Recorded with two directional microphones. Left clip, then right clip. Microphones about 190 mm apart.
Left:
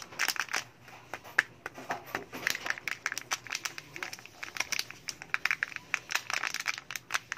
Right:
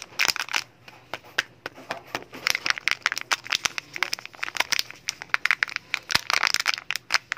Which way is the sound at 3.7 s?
25° right (ahead or behind).